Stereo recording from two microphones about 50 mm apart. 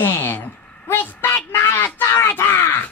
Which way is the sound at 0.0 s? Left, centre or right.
Left.